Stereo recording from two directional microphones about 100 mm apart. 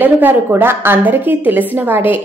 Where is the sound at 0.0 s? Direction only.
20° right (ahead or behind).